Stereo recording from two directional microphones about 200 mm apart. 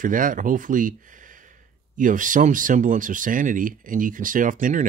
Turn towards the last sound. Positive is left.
turn(degrees=-40)  # may be behind; listen again after turning